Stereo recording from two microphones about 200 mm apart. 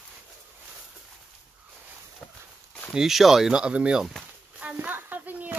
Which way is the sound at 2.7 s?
Centre (ahead or behind).